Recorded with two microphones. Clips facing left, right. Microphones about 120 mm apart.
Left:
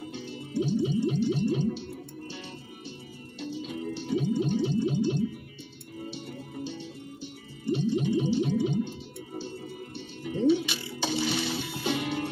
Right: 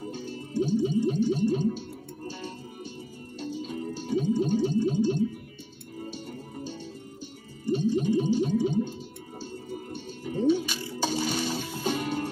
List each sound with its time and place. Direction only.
0.0 s music: 45° right (ahead or behind)